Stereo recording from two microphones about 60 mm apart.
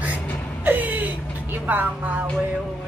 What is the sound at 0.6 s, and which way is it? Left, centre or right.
Whimper, right.